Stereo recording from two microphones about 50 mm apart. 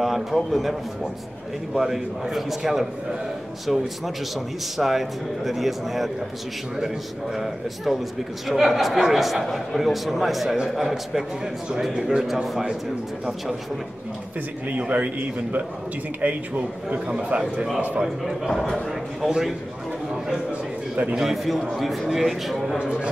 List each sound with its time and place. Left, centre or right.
0.0 s a man's voice: centre
7.3 s a man's voice: centre
14.7 s a man's voice: right
16.2 s a man's voice: right
17.1 s a man's voice: right
18.0 s a man's voice: centre
18.5 s a man's voice: centre
19.2 s a man's voice: centre
20.9 s a man's voice: right
21.2 s a man's voice: centre
22.8 s a man's voice: centre